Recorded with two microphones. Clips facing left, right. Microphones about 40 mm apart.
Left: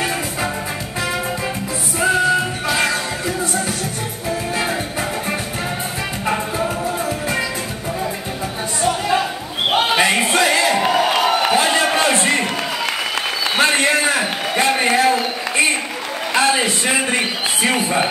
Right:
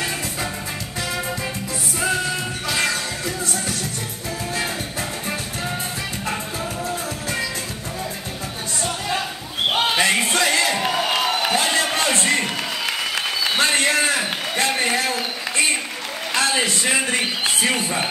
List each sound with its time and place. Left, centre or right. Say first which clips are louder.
2.7 s music: left 3 dB; centre
6.2 s music: left 9 dB; left
9.7 s crowd: left 3 dB; centre
13.6 s a sound: left 4 dB; centre